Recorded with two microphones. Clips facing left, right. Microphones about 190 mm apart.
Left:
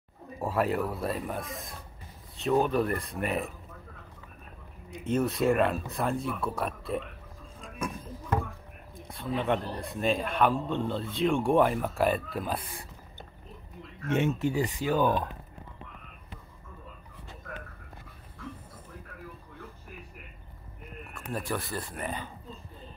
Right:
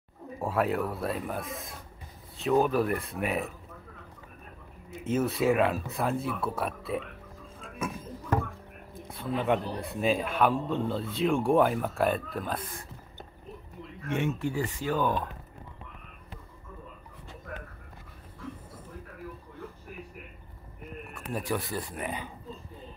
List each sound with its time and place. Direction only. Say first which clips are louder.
0.4 s a man's voice: even; centre (ahead or behind)
4.9 s a man's voice: even; 5° right (ahead or behind)
9.0 s a man's voice: right 1 dB; 5° right (ahead or behind)
14.0 s speech: left 3 dB; 25° left (ahead or behind)
21.3 s speech: right 1 dB; 10° right (ahead or behind)